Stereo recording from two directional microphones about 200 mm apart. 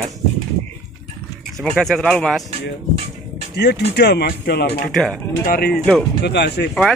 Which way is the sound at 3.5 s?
55° left (ahead or behind).